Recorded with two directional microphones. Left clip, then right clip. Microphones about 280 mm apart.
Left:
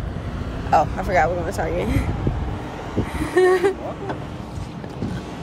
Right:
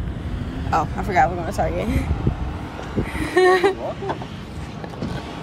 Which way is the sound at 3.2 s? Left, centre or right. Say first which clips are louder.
Right 1 dB; centre.